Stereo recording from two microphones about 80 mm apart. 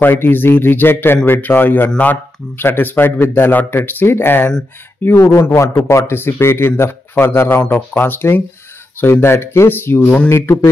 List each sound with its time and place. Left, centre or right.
0.0 s a man's voice: left
5.1 s a man's voice: left